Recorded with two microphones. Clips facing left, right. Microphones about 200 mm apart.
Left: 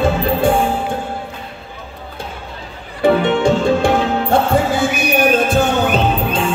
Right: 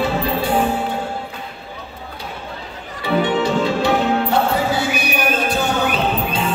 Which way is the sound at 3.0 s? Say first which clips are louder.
Left 5 dB; 50° left (ahead or behind).